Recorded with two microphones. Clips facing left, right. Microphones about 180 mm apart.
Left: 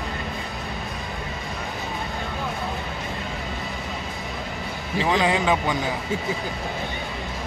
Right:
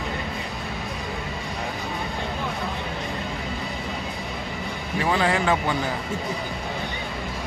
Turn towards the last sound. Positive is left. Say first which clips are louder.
# left 1 dB
turn(degrees=15)  # may be behind; listen again after turning